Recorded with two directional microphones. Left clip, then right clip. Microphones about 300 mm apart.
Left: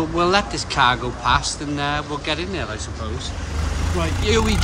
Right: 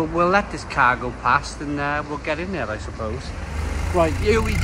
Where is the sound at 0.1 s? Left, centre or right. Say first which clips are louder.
Left 1 dB; centre.